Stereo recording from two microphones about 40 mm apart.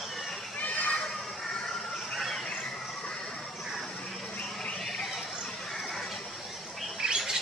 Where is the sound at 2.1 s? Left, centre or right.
Centre.